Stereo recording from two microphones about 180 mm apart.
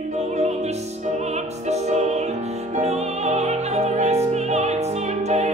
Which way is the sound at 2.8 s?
35° right (ahead or behind).